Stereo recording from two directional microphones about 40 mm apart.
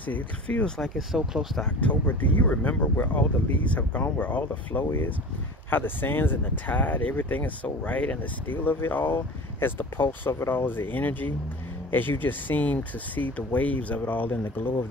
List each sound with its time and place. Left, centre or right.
0.0 s speech: left
0.8 s speech: centre
1.8 s speech: left
3.6 s speech: left
5.7 s speech: left
8.5 s speech: left